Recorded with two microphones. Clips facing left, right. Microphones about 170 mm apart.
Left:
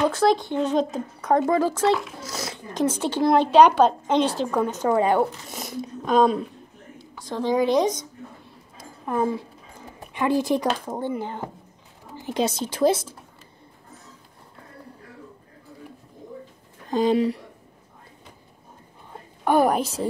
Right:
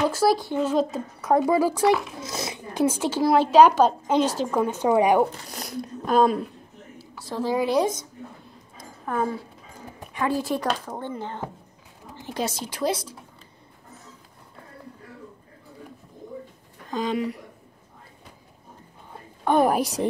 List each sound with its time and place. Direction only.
0.1 s a woman's voice: 5° right (ahead or behind)
5.5 s a woman's voice: centre (ahead or behind)
8.7 s a sound: 15° left (ahead or behind)
10.1 s speech: 20° left (ahead or behind)
16.9 s speech: 30° left (ahead or behind)
19.4 s a woman's voice: 5° left (ahead or behind)
19.7 s speech: 15° right (ahead or behind)